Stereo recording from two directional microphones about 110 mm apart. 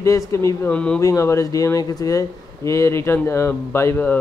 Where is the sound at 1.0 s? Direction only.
30° left (ahead or behind).